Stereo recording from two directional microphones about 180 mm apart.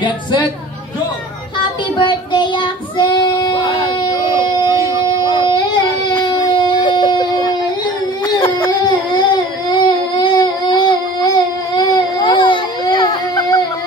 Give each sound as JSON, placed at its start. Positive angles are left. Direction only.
{"t": 0.0, "sound": "a woman's voice", "side_deg": 25}
{"t": 2.0, "sound": "child singing", "side_deg": 25}
{"t": 6.0, "sound": "baby cry", "side_deg": 25}